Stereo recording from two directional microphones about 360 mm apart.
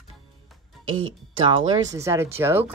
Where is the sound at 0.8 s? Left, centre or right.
Right.